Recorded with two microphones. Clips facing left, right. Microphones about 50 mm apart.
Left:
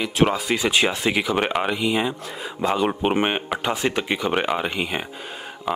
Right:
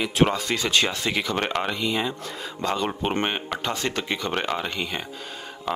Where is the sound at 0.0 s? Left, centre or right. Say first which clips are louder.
Left 1 dB; centre.